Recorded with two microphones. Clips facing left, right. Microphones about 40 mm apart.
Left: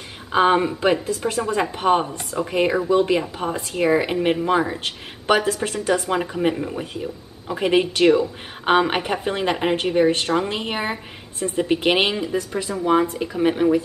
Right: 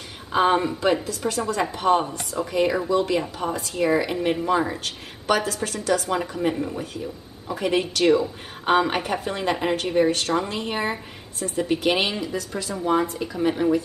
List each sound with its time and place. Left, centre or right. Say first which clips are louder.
0.3 s a woman's voice: left 3 dB; centre
6.5 s speech: left 1 dB; centre
7.4 s a woman's voice: left 4 dB; left